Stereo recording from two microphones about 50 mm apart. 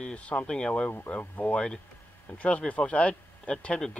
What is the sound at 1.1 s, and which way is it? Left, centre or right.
Speech, left.